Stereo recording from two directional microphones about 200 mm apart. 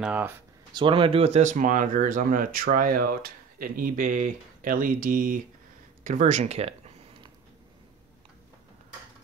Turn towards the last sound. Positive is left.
turn(degrees=-30)  # may be behind; listen again after turning